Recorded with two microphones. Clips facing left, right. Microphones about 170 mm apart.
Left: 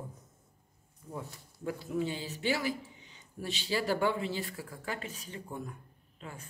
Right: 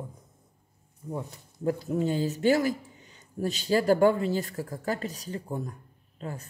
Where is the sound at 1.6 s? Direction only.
40° right (ahead or behind).